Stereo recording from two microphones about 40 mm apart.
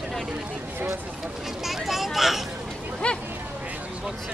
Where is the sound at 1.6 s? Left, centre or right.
Centre.